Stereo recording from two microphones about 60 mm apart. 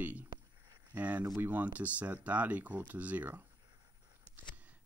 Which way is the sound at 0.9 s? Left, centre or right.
Right.